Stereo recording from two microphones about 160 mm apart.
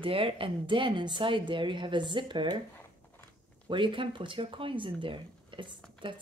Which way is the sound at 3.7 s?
30° right (ahead or behind).